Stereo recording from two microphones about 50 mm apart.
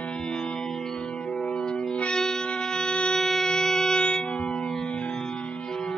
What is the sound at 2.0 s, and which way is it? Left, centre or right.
Music, centre.